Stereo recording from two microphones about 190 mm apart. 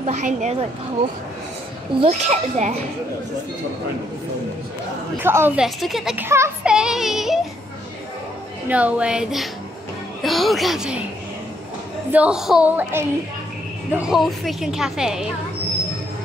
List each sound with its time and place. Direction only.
0.0 s speech: 35° right (ahead or behind)
2.0 s speech: 35° right (ahead or behind)
5.2 s speech: 10° right (ahead or behind)
5.8 s child singing: centre (ahead or behind)
8.6 s a woman's voice: 5° right (ahead or behind)
12.1 s a woman's voice: 5° right (ahead or behind)